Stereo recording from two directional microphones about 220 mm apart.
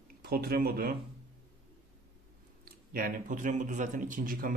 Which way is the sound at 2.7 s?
40° right (ahead or behind).